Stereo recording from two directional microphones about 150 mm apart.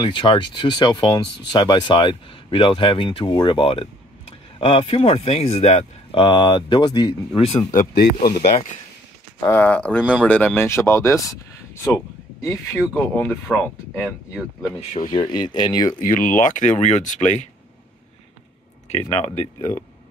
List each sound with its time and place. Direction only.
0.0 s speech: 30° left (ahead or behind)
7.9 s speech: 80° left
9.4 s speech: 10° left (ahead or behind)
14.8 s speech: 55° left (ahead or behind)
15.1 s speech: 30° left (ahead or behind)
16.0 s speech: 65° left (ahead or behind)
18.9 s speech: 45° left (ahead or behind)